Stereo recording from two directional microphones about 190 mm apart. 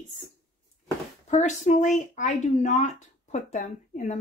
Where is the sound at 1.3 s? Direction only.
40° left (ahead or behind).